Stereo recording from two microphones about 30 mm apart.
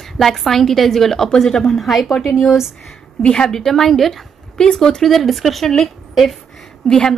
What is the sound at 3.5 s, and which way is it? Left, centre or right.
Speech, centre.